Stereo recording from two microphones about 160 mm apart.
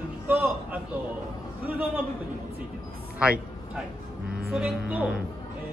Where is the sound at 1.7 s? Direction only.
10° right (ahead or behind).